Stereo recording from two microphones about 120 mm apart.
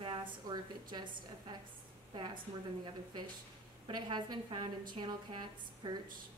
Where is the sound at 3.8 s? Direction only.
40° right (ahead or behind).